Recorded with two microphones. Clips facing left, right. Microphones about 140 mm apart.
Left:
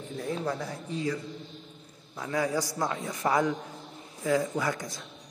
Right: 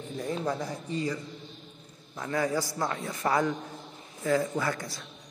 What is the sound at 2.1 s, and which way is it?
A man's voice, 10° left (ahead or behind).